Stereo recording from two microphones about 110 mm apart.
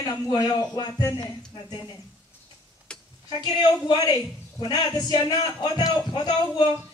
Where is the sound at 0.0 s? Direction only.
35° left (ahead or behind).